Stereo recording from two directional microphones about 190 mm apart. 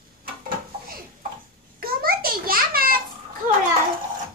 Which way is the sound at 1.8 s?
50° right (ahead or behind).